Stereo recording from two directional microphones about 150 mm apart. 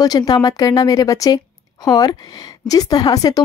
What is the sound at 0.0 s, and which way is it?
A woman's voice, 25° left (ahead or behind).